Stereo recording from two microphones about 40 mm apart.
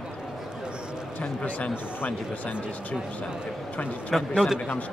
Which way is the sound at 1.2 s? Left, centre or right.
Left.